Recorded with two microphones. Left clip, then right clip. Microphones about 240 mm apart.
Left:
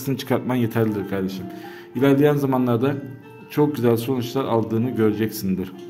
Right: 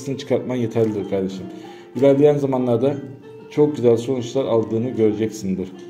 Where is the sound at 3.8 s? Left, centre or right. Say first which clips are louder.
Right 4 dB; left.